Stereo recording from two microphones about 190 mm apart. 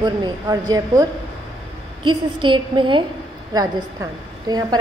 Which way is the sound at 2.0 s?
25° right (ahead or behind).